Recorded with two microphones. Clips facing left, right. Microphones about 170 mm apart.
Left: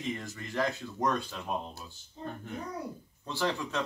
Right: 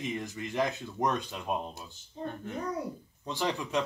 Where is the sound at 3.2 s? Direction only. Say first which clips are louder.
Even; 15° right (ahead or behind).